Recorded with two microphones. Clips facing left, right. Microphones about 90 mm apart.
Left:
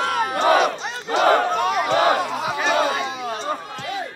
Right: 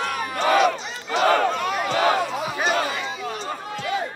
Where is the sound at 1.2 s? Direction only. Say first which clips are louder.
Left 2 dB; 25° left (ahead or behind).